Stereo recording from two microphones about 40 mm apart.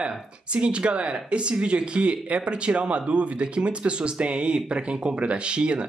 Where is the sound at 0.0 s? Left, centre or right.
Right.